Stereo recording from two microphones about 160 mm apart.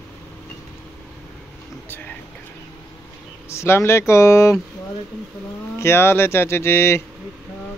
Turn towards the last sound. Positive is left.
turn(degrees=15)  # may be behind; listen again after turning